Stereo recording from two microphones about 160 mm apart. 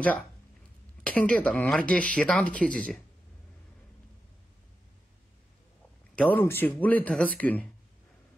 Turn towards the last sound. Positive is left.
turn(degrees=10)  # may be behind; listen again after turning